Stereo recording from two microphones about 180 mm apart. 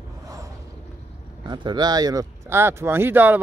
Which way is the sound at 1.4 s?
25° right (ahead or behind).